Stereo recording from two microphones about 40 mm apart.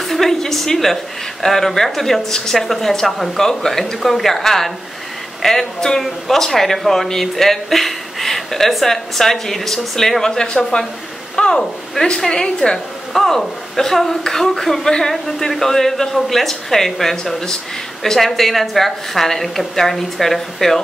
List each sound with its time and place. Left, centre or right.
0.0 s a sound: centre
1.4 s speech: centre
10.3 s a woman's voice: centre